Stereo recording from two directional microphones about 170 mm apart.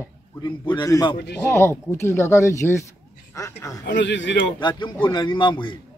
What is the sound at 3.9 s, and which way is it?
Speech, 90° left.